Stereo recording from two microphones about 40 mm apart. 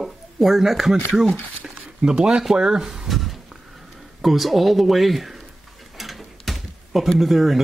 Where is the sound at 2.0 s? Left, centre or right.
Centre.